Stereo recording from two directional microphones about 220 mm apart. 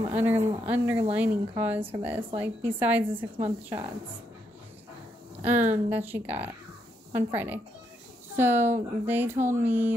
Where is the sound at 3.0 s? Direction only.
25° right (ahead or behind).